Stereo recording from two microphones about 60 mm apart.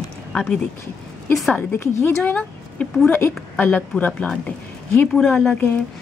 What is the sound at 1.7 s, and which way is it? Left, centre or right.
Speech, left.